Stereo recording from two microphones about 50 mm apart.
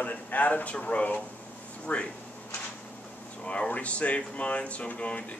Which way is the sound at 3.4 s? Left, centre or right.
Left.